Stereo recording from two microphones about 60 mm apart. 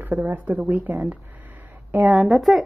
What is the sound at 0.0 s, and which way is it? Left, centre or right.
A woman's voice, right.